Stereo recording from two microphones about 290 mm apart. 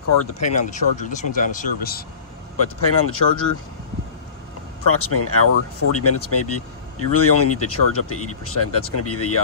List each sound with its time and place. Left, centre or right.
0.4 s speech: left
2.5 s speech: left
4.8 s speech: left